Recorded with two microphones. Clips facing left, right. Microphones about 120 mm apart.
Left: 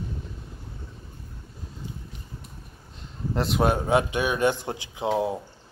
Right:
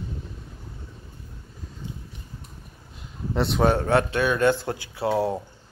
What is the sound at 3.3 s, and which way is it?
Speech, centre (ahead or behind).